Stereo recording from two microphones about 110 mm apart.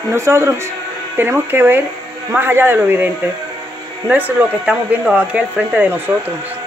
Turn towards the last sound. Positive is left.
turn(degrees=-15)  # may be behind; listen again after turning